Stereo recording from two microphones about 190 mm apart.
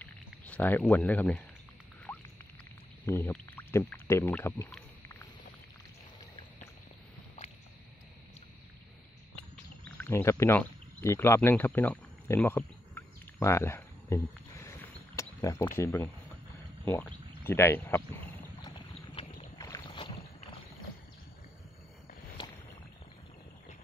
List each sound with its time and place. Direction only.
0.0 s speech: 10° left (ahead or behind)
2.1 s rodents: 5° left (ahead or behind)
3.1 s speech: 10° left (ahead or behind)
9.8 s a sound: 10° left (ahead or behind)
15.8 s speech: 15° left (ahead or behind)
18.6 s boat: 25° left (ahead or behind)
19.6 s rowboat: 20° left (ahead or behind)